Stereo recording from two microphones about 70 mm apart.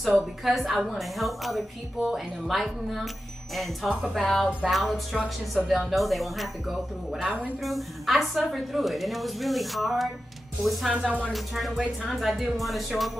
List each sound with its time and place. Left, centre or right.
0.4 s a woman's voice: centre
10.9 s music: centre
11.3 s a woman's voice: centre